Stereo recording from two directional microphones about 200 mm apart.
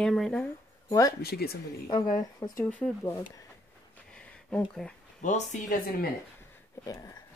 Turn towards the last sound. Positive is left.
turn(degrees=40)  # may be behind; listen again after turning